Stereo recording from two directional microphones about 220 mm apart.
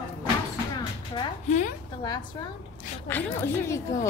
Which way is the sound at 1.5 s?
35° left (ahead or behind).